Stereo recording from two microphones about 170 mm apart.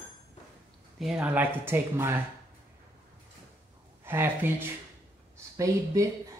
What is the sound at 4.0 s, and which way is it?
Speech, 15° right (ahead or behind).